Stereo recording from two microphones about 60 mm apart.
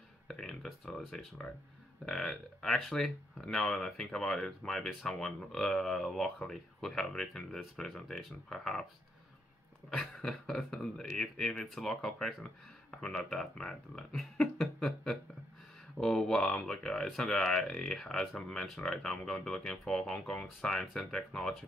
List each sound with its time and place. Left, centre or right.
0.3 s a sound: centre
0.9 s speech: centre
9.8 s speech: centre